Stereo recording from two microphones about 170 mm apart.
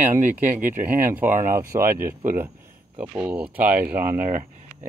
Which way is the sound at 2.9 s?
30° right (ahead or behind).